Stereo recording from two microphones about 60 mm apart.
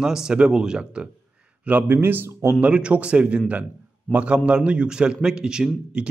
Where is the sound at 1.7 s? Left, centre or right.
Right.